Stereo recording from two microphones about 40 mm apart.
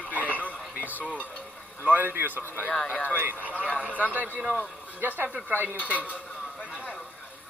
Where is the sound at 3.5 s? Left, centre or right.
Left.